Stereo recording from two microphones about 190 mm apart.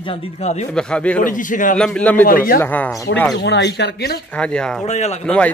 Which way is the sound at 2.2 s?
45° left (ahead or behind).